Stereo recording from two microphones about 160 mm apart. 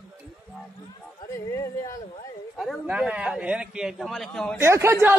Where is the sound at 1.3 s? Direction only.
20° left (ahead or behind).